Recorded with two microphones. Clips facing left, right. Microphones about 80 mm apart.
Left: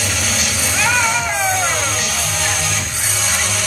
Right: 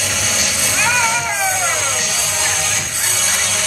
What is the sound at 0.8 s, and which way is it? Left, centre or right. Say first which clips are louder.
Music: even; centre.